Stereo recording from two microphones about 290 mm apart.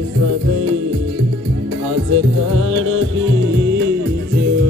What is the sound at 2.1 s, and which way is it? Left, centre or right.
Music, right.